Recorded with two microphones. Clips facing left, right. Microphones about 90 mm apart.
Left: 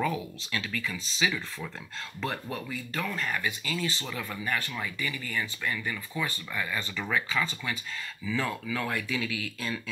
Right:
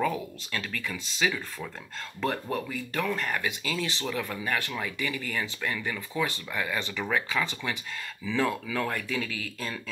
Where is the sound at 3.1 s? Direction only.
70° right (ahead or behind); by 4.0 s 90° right.